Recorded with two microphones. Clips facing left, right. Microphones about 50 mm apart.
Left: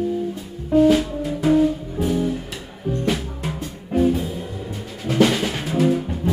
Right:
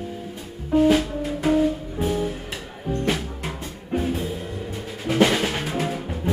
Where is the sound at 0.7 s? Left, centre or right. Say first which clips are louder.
Left 3 dB; centre.